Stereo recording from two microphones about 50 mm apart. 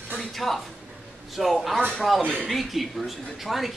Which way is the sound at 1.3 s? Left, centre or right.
Centre.